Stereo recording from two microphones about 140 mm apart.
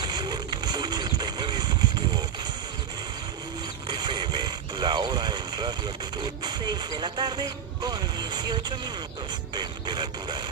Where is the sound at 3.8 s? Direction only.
30° right (ahead or behind).